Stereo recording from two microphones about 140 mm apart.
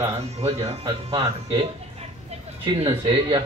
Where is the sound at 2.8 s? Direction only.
40° right (ahead or behind).